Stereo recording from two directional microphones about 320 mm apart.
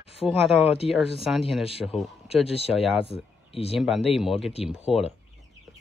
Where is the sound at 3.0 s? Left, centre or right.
Centre.